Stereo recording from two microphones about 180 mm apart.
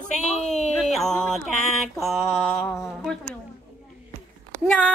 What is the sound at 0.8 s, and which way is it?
Mantra, centre (ahead or behind).